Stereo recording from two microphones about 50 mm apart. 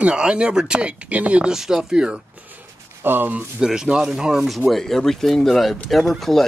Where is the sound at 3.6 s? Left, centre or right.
Centre.